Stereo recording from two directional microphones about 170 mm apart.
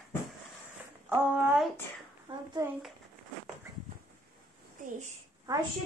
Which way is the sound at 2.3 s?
30° right (ahead or behind).